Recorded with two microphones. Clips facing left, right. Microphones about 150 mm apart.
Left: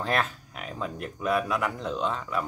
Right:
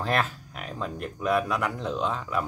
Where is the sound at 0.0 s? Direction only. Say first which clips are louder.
Right 1 dB; centre (ahead or behind).